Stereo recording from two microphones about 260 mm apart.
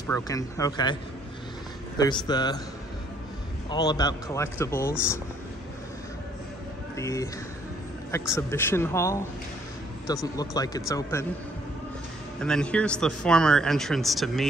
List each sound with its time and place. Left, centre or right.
0.1 s speech: centre
2.0 s speech: centre
3.7 s speech: centre
7.0 s speech: centre
12.4 s speech: centre